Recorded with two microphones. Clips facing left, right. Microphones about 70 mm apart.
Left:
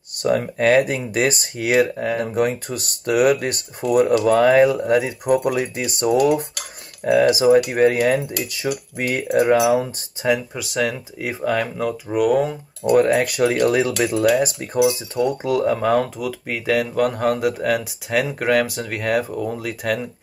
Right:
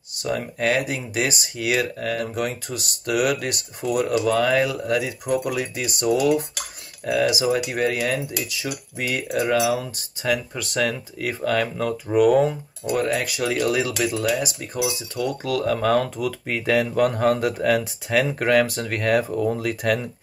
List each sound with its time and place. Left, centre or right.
0.2 s speech: left
2.3 s speech: left
5.2 s speech: left
9.1 s speech: left
10.6 s speech: centre
12.9 s speech: left
15.1 s speech: centre